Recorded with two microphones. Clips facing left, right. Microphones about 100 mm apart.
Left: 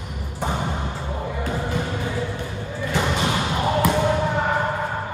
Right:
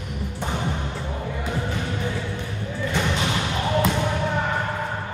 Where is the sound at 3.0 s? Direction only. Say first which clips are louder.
Left 3 dB; 15° left (ahead or behind).